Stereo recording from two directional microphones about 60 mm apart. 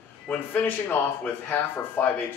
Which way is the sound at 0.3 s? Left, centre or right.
Left.